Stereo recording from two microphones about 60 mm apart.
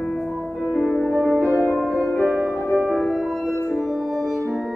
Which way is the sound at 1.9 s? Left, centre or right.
Left.